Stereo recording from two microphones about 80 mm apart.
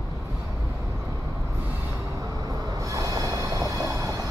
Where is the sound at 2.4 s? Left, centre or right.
Right.